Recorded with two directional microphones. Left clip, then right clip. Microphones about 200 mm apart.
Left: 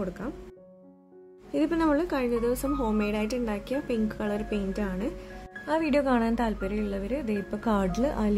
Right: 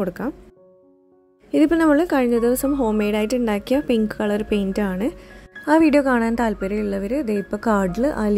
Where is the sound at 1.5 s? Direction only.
40° right (ahead or behind).